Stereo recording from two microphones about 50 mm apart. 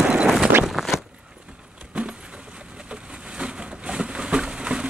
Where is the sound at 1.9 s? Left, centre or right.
Centre.